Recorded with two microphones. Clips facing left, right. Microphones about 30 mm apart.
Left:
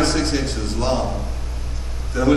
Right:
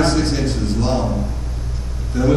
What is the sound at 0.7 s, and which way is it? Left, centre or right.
Speech, left.